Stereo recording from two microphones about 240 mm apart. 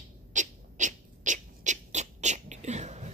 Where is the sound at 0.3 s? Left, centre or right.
Right.